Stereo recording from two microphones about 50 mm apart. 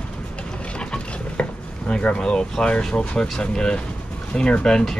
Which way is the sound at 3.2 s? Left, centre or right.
Centre.